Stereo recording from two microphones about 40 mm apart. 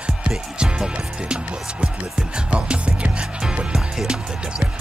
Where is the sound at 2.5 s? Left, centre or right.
Right.